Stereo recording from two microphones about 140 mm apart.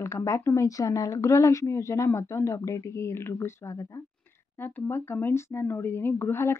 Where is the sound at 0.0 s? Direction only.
20° left (ahead or behind).